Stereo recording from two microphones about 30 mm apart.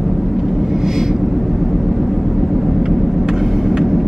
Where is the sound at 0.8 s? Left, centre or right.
Centre.